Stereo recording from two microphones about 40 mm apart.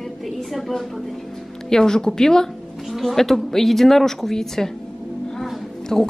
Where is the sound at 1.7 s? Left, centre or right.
Centre.